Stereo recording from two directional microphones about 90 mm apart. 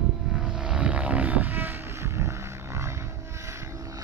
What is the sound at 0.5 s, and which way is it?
Vehicle, 10° right (ahead or behind).